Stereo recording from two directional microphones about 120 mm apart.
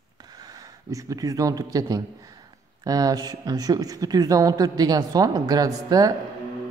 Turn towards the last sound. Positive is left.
turn(degrees=-30)  # may be behind; listen again after turning